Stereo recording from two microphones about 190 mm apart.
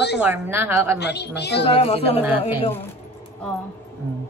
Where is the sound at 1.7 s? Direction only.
30° left (ahead or behind).